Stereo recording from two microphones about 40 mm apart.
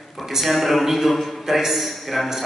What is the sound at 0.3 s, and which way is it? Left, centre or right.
A man's voice, centre.